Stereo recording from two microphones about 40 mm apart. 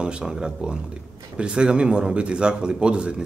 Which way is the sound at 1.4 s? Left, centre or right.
Right.